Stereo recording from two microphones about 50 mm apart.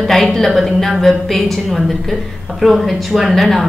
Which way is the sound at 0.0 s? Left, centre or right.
Centre.